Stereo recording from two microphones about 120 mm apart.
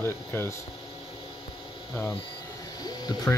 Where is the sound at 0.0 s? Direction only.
20° left (ahead or behind).